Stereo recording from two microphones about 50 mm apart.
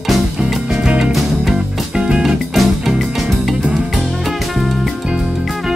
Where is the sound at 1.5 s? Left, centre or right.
Centre.